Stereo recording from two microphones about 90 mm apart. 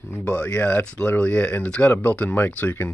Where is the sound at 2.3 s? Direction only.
25° left (ahead or behind).